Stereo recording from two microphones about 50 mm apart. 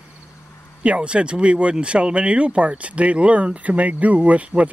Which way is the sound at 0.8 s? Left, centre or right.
Right.